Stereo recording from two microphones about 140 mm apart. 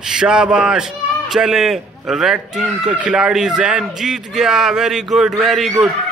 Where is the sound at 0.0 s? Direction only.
5° right (ahead or behind).